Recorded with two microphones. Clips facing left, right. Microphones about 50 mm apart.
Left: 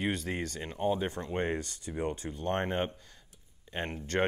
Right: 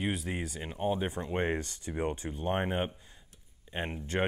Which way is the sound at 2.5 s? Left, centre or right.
Centre.